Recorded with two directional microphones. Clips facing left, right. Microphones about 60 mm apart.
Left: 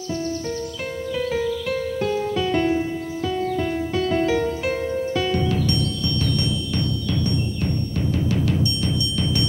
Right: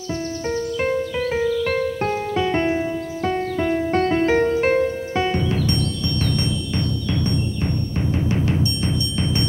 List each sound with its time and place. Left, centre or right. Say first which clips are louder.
0.5 s music: right 6 dB; right
4.3 s music: right 5 dB; right
8.3 s music: right 1 dB; right